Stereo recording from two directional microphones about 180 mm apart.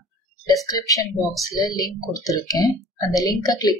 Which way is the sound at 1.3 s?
Centre (ahead or behind).